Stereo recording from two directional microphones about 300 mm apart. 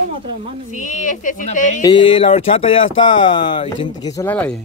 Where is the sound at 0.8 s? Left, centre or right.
Left; by 4.6 s centre.